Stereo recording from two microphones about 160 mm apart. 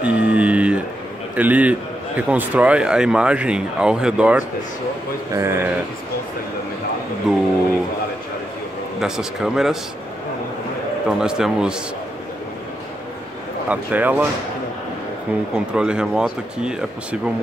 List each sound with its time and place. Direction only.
0.0 s a sound: 10° right (ahead or behind)
1.3 s a man's voice: 10° right (ahead or behind)
7.3 s speech: centre (ahead or behind)
9.0 s speech: 5° right (ahead or behind)
11.1 s speech: 5° right (ahead or behind)
13.7 s a man's voice: 10° right (ahead or behind)
15.5 s speech: 5° right (ahead or behind)